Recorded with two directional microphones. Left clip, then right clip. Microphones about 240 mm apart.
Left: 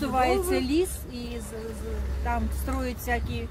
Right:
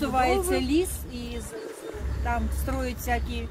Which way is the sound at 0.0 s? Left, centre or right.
Centre.